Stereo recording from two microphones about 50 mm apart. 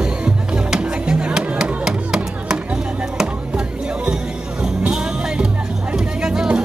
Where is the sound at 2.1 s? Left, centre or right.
Centre.